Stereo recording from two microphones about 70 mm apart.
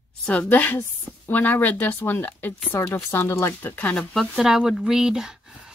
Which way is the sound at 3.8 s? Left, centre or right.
Centre.